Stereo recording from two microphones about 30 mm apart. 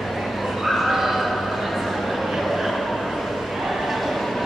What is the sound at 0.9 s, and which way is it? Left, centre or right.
Bow-wow, centre.